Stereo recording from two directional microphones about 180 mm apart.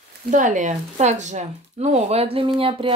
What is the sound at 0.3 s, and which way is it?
Speech, 45° right (ahead or behind).